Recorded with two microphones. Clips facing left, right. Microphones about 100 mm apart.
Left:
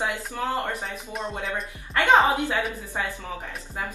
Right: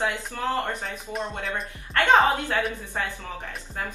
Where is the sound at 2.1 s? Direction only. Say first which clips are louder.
Even; 15° left (ahead or behind).